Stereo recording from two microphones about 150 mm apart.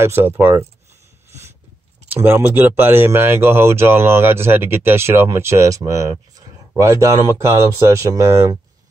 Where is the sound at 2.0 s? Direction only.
15° right (ahead or behind).